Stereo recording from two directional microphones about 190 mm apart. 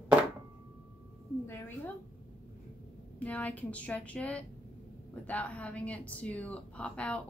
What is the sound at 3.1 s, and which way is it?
Speech, 5° left (ahead or behind).